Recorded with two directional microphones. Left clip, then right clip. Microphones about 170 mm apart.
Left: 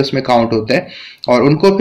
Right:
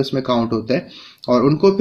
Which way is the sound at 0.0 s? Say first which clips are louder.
Left 7 dB; 30° right (ahead or behind).